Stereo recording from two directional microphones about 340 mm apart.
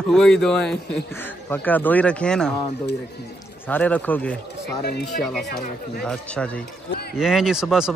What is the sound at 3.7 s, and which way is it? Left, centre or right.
Speech, centre.